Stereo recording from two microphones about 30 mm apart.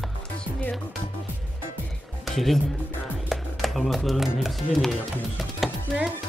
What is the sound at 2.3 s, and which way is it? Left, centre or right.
Speech, centre.